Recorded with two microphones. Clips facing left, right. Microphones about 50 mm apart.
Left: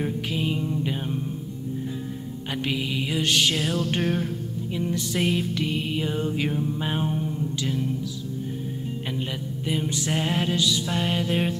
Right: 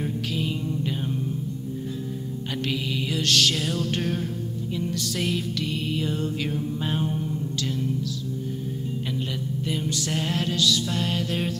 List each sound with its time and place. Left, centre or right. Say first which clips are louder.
0.0 s music: left 1 dB; left
2.5 s music: left 1 dB; centre
9.7 s music: left 3 dB; centre